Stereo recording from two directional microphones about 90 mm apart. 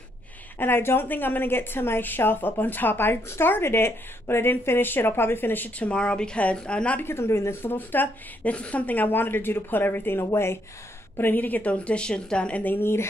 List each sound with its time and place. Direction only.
0.6 s a woman's voice: 25° left (ahead or behind)
7.1 s a woman's voice: 30° left (ahead or behind)